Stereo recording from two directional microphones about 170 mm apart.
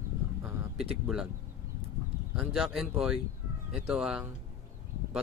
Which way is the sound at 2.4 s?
Centre (ahead or behind).